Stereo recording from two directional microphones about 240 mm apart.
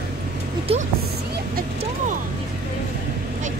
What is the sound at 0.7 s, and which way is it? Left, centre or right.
Music, right.